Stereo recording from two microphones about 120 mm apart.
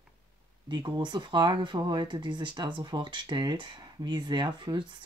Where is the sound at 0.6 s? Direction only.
40° right (ahead or behind).